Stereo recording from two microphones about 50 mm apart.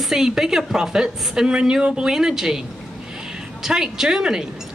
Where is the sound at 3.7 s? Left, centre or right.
Centre.